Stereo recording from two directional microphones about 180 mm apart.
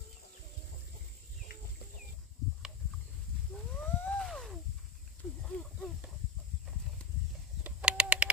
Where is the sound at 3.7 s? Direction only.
10° left (ahead or behind).